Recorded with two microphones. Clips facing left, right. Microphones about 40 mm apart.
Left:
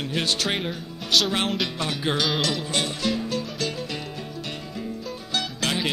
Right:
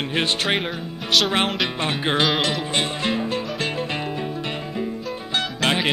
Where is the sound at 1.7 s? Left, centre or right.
Right.